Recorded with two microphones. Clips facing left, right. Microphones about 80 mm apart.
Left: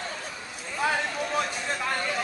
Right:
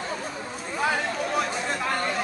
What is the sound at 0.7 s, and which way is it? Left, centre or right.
Chatter, centre.